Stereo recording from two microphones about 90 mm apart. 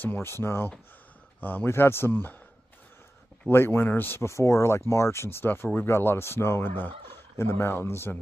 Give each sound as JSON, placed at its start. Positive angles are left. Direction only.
{"t": 0.0, "sound": "speech", "side_deg": 25}
{"t": 3.4, "sound": "speech", "side_deg": 25}
{"t": 7.1, "sound": "turkey", "side_deg": 30}